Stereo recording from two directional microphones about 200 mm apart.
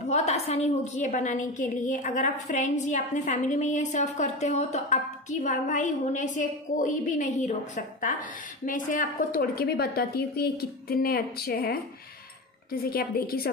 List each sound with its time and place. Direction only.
0.1 s a woman's voice: 35° left (ahead or behind); by 11.8 s 50° left (ahead or behind)
12.9 s a woman's voice: 50° left (ahead or behind)